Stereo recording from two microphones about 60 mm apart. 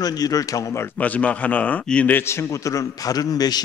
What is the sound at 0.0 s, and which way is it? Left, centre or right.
Speech, left.